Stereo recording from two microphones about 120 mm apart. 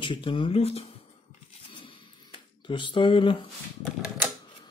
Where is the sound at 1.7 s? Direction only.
45° left (ahead or behind).